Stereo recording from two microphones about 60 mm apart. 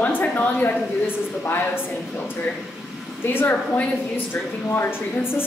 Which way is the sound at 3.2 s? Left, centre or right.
Left.